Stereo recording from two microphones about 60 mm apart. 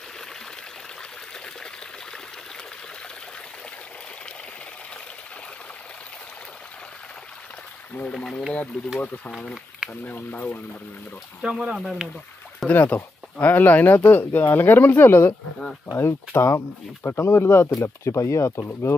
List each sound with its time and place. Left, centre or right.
8.1 s speech: centre
10.0 s speech: left
11.4 s speech: centre
12.6 s speech: left
15.9 s speech: left
17.7 s speech: left